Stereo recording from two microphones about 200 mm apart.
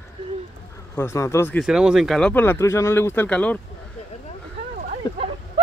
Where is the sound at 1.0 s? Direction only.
15° left (ahead or behind).